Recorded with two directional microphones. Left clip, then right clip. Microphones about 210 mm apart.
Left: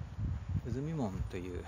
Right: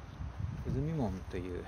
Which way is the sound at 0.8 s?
30° left (ahead or behind).